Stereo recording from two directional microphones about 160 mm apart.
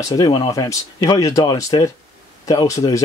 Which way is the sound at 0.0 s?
25° left (ahead or behind).